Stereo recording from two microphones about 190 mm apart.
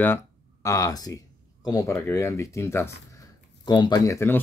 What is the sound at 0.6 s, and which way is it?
Speech, 20° left (ahead or behind).